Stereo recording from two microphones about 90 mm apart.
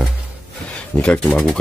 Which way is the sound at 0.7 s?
15° left (ahead or behind).